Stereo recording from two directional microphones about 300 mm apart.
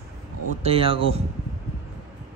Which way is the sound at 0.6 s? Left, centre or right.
Centre.